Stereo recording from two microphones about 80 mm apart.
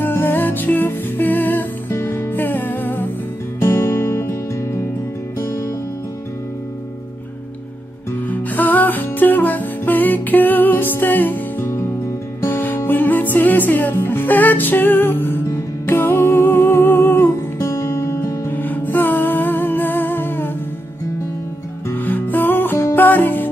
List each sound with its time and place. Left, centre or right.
0.0 s music: left
1.9 s music: left
3.6 s music: left
8.3 s music: left
18.5 s music: left
21.9 s music: left